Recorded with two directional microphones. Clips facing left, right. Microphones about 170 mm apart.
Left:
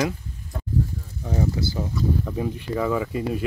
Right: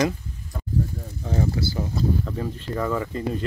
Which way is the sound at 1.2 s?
15° left (ahead or behind).